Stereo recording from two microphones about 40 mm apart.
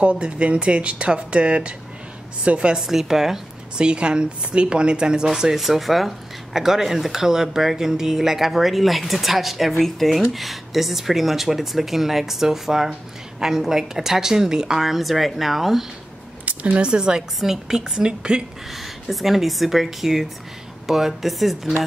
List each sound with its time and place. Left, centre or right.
0.0 s speech: right
2.7 s a woman's voice: centre
3.7 s speech: right
5.4 s a woman's voice: centre
16.4 s a sound: right
16.8 s speech: right
17.4 s a woman's voice: centre
18.7 s speech: centre